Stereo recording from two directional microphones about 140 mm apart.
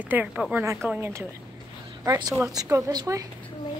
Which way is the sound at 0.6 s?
20° right (ahead or behind).